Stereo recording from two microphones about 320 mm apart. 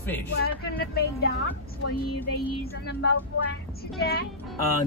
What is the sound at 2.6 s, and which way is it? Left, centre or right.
Speech, left.